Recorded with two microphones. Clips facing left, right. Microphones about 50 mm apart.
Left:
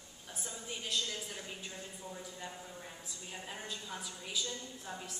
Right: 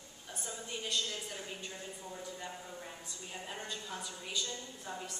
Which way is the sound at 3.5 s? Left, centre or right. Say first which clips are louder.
Right 1 dB; centre.